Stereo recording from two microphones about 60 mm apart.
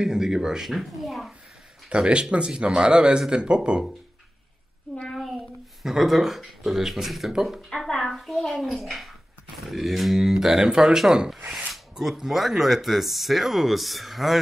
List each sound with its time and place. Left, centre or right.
0.0 s speech: centre
1.9 s speech: centre
5.8 s speech: centre
7.7 s a child's voice: centre